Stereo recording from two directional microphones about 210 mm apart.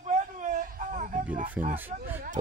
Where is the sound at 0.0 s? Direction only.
35° right (ahead or behind).